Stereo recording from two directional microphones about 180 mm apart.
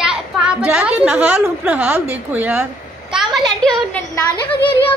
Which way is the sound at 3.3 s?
25° right (ahead or behind).